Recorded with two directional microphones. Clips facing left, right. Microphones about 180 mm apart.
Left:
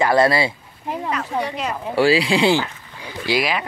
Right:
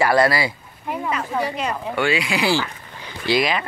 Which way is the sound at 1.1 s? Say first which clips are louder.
Even; centre (ahead or behind).